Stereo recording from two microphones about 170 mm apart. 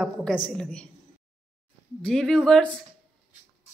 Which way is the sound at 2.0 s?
5° left (ahead or behind).